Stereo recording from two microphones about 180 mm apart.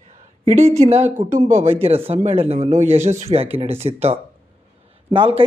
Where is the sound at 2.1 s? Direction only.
35° right (ahead or behind).